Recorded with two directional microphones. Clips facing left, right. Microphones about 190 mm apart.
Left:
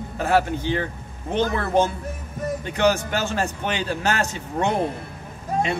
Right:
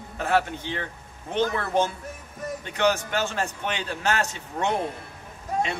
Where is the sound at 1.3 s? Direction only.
35° left (ahead or behind).